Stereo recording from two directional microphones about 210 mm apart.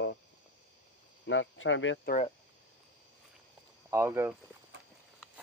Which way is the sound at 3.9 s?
10° right (ahead or behind).